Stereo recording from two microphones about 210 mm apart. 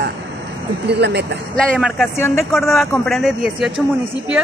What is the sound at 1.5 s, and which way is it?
Speech, centre (ahead or behind).